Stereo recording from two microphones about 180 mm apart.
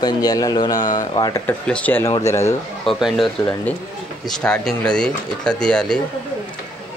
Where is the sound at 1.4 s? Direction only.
5° left (ahead or behind).